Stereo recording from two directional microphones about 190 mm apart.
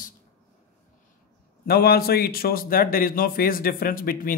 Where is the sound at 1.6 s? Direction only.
55° left (ahead or behind).